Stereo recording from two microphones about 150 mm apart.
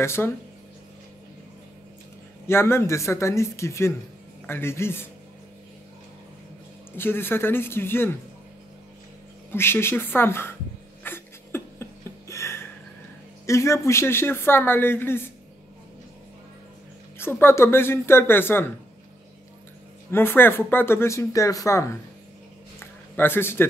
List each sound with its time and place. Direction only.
0.0 s speech: 15° left (ahead or behind)
2.4 s speech: 15° left (ahead or behind)
7.0 s speech: 15° left (ahead or behind)
9.5 s speech: 15° left (ahead or behind)
11.1 s a sound: 15° left (ahead or behind)
13.5 s speech: 20° left (ahead or behind)
17.2 s speech: 15° left (ahead or behind)
20.1 s speech: 15° left (ahead or behind)
23.1 s speech: 15° left (ahead or behind)